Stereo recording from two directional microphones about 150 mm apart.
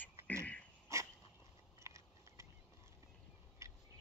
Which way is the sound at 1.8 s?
20° right (ahead or behind).